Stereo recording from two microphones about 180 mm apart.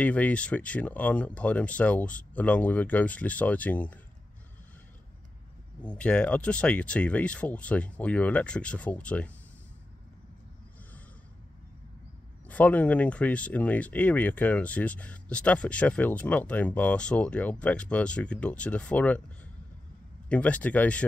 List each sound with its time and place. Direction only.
0.0 s speech: 10° left (ahead or behind)
5.8 s speech: 5° left (ahead or behind)
12.4 s speech: 10° left (ahead or behind)
20.2 s speech: 5° left (ahead or behind)